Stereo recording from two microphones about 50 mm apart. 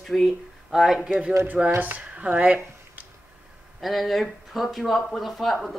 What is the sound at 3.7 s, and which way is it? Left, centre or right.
Speech, centre.